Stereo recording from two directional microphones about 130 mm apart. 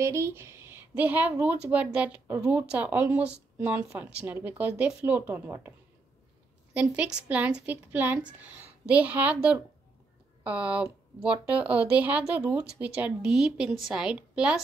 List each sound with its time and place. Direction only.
0.0 s speech: 20° right (ahead or behind)
6.7 s a woman's voice: 10° right (ahead or behind)